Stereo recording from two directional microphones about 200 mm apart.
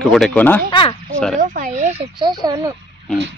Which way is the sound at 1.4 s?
40° right (ahead or behind).